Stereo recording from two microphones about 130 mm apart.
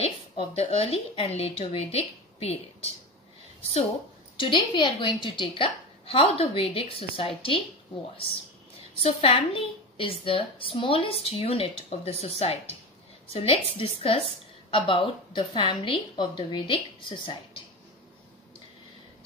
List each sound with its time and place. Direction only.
0.0 s a woman's voice: 45° left (ahead or behind)
4.4 s a woman's voice: 35° left (ahead or behind)
9.0 s a woman's voice: 50° left (ahead or behind)